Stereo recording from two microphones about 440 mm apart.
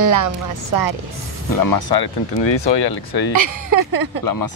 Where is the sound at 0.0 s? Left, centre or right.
Right.